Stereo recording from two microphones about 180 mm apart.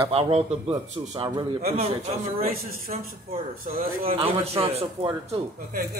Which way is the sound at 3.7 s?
40° right (ahead or behind).